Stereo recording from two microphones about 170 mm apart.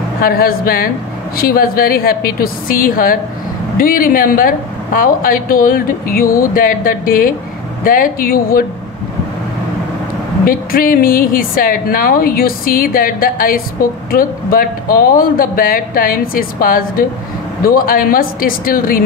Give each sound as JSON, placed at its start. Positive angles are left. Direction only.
{"t": 0.2, "sound": "a woman's voice", "side_deg": 60}
{"t": 10.4, "sound": "a woman's voice", "side_deg": 55}